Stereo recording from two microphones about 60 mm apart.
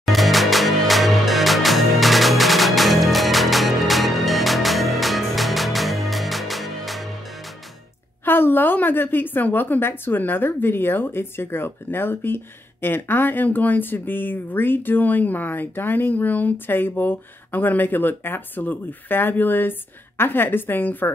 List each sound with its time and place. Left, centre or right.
0.0 s music: centre
8.3 s speech: left